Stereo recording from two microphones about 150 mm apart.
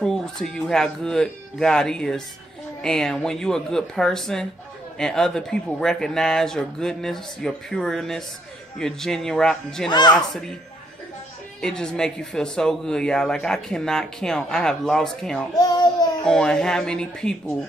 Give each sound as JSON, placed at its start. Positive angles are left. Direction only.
{"t": 0.0, "sound": "speech", "side_deg": 5}
{"t": 9.8, "sound": "speech", "side_deg": 30}
{"t": 11.6, "sound": "speech", "side_deg": 5}
{"t": 15.5, "sound": "speech", "side_deg": 25}
{"t": 16.3, "sound": "speech", "side_deg": 5}